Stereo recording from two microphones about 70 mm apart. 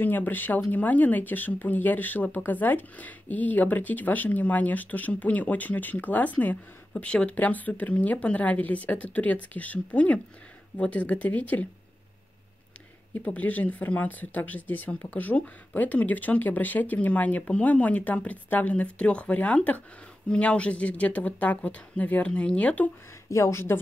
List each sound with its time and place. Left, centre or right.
0.0 s speech: left
13.1 s speech: left
23.3 s a woman's voice: left